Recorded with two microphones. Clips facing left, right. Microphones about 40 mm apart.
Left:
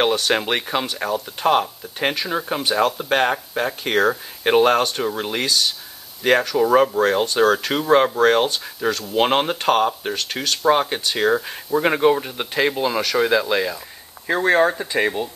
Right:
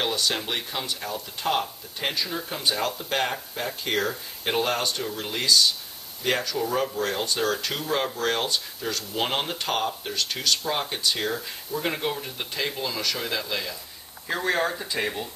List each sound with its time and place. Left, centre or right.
0.0 s speech: left
7.0 s speech: left
11.8 s speech: left
14.3 s speech: left